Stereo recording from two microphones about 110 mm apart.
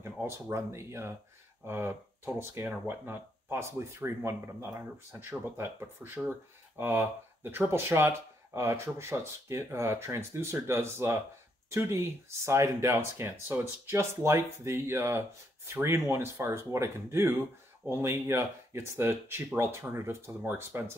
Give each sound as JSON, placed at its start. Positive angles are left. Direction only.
{"t": 0.0, "sound": "speech", "side_deg": -25}